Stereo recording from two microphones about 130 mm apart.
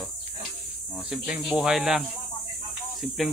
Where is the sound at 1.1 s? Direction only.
5° right (ahead or behind).